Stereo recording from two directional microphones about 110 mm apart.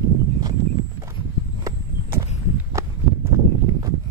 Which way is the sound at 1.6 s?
25° right (ahead or behind).